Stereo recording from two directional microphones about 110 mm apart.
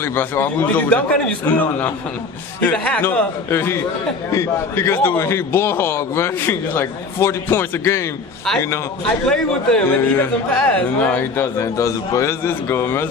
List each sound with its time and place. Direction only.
0.0 s a man's voice: 20° left (ahead or behind)
9.2 s a man's voice: 5° left (ahead or behind)